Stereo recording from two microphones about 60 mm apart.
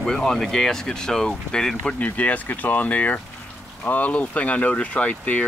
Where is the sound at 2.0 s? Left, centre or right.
Left.